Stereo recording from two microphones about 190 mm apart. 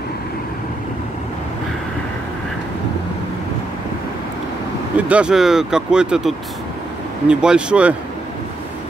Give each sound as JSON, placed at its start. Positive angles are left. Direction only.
{"t": 4.9, "sound": "speech", "side_deg": -5}